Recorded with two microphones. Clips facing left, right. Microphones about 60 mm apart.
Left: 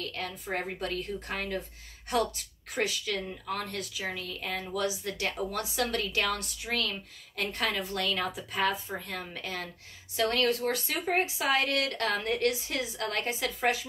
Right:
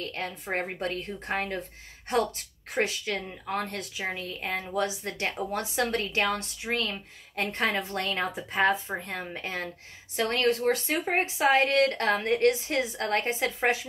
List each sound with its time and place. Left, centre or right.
0.0 s a woman's voice: right